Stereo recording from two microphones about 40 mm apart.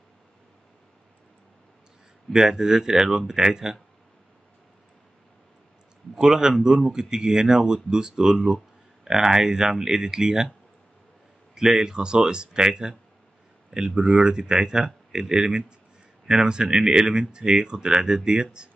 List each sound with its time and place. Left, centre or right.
2.3 s speech: centre
6.1 s speech: centre
11.5 s speech: centre